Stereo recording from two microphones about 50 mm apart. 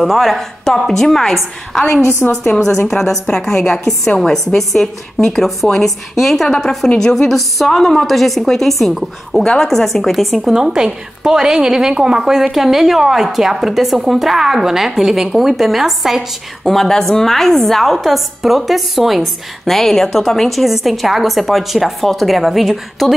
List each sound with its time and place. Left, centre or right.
0.0 s a woman's voice: centre
1.9 s a woman's voice: left
2.4 s a woman's voice: centre
10.5 s a woman's voice: centre
16.6 s a woman's voice: centre